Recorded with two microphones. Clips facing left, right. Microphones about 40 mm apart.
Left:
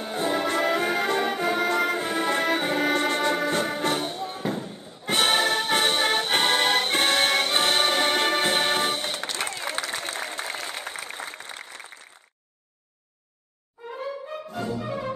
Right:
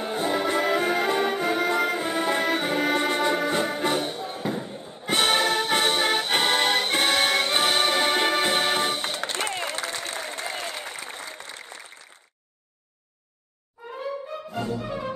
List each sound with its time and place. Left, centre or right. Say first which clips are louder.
0.0 s music: right 1 dB; centre
4.6 s slam: right 1 dB; centre
5.0 s music: even; centre
9.2 s a sound: right 2 dB; right
9.7 s a sound: left 1 dB; left
11.1 s applause: left 1 dB; left